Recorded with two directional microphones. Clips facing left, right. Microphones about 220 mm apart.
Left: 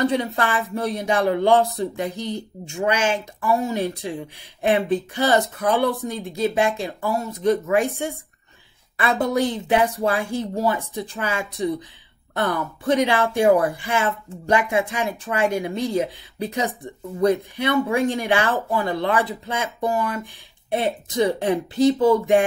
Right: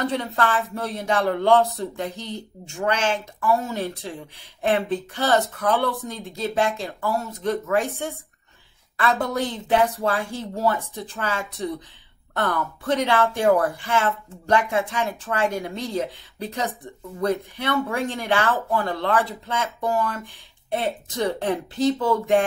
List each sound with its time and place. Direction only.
0.0 s speech: 10° left (ahead or behind)